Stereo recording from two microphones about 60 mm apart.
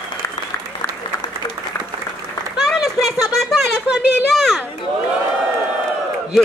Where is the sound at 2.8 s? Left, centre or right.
Centre.